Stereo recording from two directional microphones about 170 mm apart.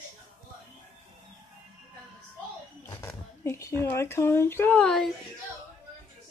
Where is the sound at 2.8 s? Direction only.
15° left (ahead or behind).